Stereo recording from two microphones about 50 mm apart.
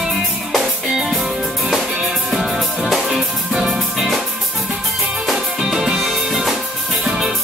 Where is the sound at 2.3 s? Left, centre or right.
Centre.